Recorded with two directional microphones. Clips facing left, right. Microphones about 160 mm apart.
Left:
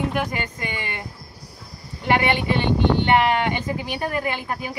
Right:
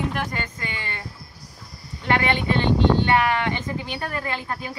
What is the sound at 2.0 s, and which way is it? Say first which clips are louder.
Speech: left 2 dB; 15° left (ahead or behind).